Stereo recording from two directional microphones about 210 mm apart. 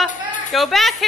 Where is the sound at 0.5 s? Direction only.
Centre (ahead or behind).